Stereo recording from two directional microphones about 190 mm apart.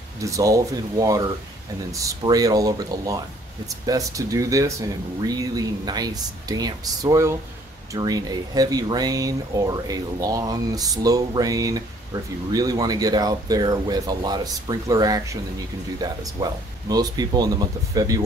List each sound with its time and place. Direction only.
0.2 s speech: 15° right (ahead or behind)